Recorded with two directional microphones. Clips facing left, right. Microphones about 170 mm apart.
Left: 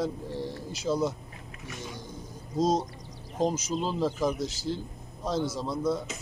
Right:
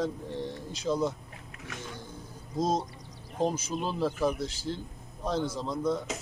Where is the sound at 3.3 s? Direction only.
15° left (ahead or behind).